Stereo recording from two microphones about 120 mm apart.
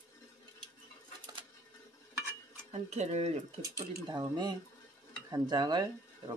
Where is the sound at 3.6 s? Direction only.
35° right (ahead or behind).